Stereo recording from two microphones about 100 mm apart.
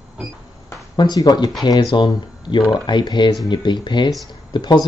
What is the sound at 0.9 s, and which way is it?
Speech, 40° left (ahead or behind).